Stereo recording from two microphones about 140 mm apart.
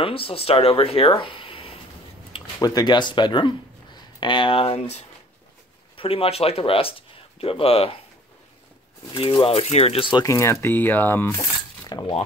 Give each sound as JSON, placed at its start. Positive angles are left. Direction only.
{"t": 0.0, "sound": "speech", "side_deg": 40}
{"t": 2.6, "sound": "speech", "side_deg": 30}
{"t": 9.1, "sound": "speech", "side_deg": 40}
{"t": 10.2, "sound": "speech", "side_deg": 20}
{"t": 11.8, "sound": "cutlery", "side_deg": 30}